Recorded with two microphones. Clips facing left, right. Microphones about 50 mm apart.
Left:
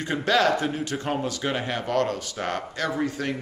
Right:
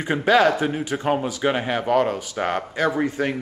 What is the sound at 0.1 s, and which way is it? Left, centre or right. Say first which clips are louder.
Speech: right 4 dB; centre.